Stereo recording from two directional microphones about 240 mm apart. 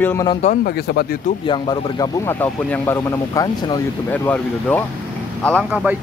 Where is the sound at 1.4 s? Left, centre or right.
Centre.